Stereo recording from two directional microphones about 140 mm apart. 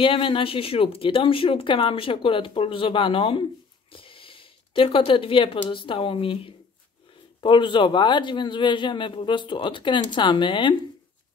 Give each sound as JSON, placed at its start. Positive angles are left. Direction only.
{"t": 0.0, "sound": "speech", "side_deg": 40}
{"t": 3.9, "sound": "a sound", "side_deg": 40}
{"t": 5.9, "sound": "speech", "side_deg": 40}